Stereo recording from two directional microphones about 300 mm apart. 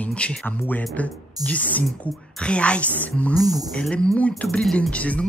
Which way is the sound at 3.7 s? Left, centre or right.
Centre.